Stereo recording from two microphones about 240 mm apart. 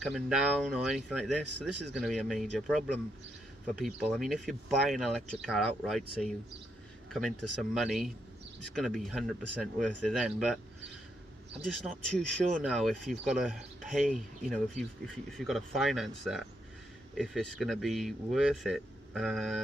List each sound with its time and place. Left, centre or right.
0.0 s speech: centre
3.8 s speech: centre
11.6 s speech: centre